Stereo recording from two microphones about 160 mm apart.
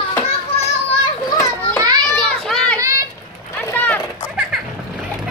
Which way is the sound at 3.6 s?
10° left (ahead or behind).